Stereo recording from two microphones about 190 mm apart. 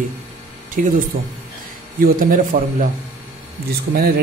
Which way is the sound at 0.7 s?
45° right (ahead or behind).